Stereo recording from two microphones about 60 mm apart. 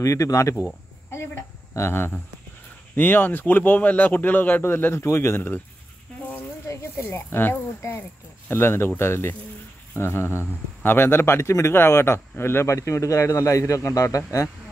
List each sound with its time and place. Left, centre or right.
0.0 s a man's voice: left
1.1 s a sound: left
3.0 s speech: left
6.7 s speech: left
12.6 s a man's voice: left